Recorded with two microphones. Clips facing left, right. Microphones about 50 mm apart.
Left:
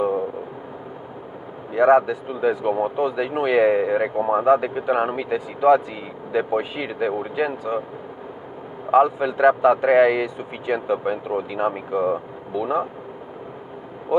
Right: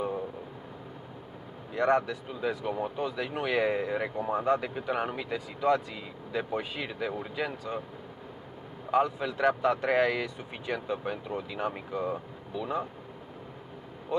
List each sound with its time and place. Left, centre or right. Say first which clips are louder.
1.7 s speech: left 10 dB; centre
8.9 s speech: left 10 dB; centre